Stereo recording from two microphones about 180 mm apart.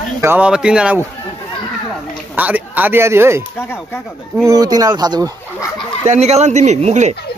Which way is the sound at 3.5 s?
10° left (ahead or behind).